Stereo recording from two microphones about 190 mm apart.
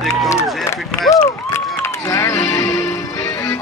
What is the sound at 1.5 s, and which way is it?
Music, 15° left (ahead or behind).